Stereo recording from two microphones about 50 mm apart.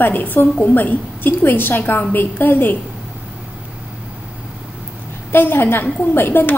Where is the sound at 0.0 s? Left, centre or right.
Left.